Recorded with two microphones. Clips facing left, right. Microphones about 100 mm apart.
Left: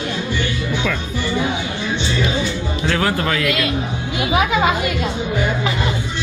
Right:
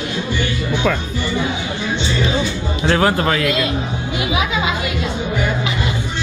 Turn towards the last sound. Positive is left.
turn(degrees=50)  # may be behind; listen again after turning